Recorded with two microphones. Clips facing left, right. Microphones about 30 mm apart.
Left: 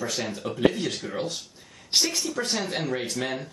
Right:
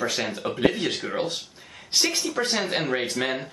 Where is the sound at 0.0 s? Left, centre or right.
Right.